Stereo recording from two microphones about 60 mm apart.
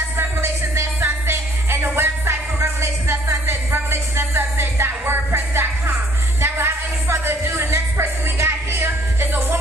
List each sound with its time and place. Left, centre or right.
0.2 s music: right